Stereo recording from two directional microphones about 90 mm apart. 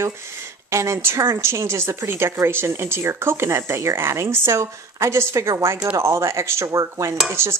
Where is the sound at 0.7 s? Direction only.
30° right (ahead or behind).